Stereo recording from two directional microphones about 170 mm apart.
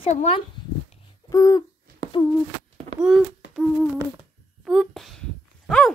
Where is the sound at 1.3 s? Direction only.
20° left (ahead or behind).